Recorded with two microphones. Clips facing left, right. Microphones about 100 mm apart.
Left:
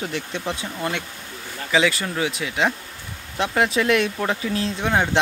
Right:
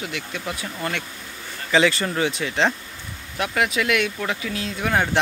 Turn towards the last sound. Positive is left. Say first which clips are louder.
# left 3 dB
turn(degrees=30)  # may be behind; listen again after turning